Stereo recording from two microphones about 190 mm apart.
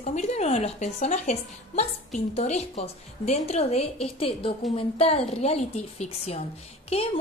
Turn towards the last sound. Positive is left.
turn(degrees=30)  # may be behind; listen again after turning